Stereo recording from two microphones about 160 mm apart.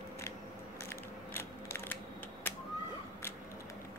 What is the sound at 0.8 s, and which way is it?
Mechanisms, 15° left (ahead or behind).